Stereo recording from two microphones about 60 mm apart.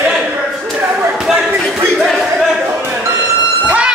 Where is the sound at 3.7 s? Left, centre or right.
Centre.